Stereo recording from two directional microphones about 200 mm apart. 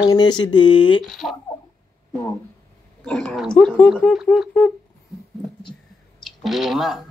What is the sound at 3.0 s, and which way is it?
Speech, 5° left (ahead or behind).